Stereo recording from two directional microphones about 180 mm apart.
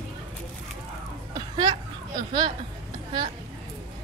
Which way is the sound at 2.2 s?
25° right (ahead or behind).